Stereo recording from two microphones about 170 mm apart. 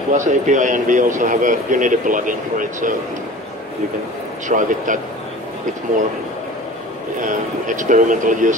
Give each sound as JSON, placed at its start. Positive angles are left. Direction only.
{"t": 0.1, "sound": "speech", "side_deg": -45}
{"t": 4.5, "sound": "speech", "side_deg": -50}
{"t": 7.2, "sound": "speech", "side_deg": -50}